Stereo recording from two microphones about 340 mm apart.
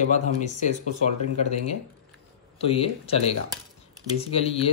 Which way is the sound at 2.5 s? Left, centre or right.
Centre.